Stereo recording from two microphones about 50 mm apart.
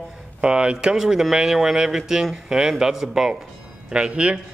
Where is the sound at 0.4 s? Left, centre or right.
Centre.